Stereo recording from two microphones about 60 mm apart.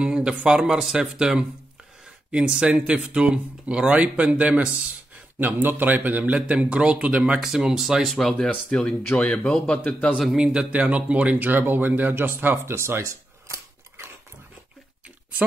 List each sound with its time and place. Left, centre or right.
0.0 s speech: centre
5.4 s speech: right; by 7.3 s centre
7.3 s speech: centre
8.6 s speech: centre
10.3 s speech: centre; by 13.1 s right